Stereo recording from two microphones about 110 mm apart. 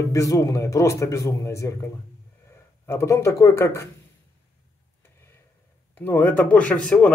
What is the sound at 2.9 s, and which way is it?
Speech, 25° left (ahead or behind).